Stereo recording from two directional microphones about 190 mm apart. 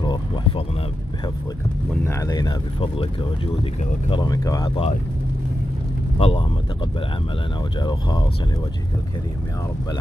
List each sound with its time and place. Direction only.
0.0 s vehicle: 25° left (ahead or behind)
2.0 s speech: 20° left (ahead or behind)
4.1 s speech: 20° left (ahead or behind)
6.1 s speech: 30° left (ahead or behind)
7.8 s speech: 25° left (ahead or behind)